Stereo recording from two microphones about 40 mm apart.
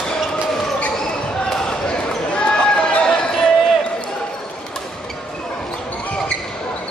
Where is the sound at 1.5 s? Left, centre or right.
Centre.